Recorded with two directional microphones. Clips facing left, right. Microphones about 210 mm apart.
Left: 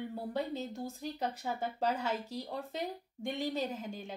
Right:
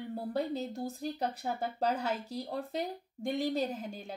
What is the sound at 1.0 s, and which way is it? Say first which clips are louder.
Speech: right 2 dB; 35° right (ahead or behind).